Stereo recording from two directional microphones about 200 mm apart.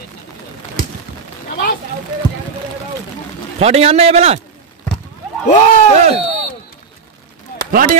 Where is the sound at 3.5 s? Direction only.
30° right (ahead or behind).